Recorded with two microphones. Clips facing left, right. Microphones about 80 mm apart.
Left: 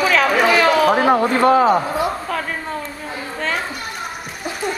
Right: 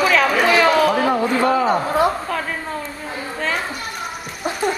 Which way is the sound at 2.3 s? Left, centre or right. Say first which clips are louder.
Even; centre.